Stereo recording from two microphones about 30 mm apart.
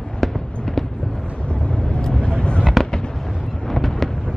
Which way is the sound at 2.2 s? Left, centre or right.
Left.